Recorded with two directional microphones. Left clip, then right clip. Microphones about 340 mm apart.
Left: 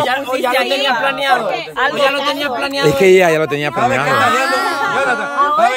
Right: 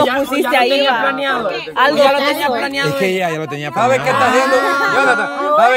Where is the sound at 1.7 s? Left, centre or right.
Right.